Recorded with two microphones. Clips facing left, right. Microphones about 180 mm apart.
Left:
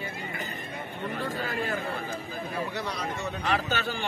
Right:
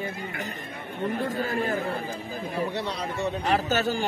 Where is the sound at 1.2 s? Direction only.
45° right (ahead or behind).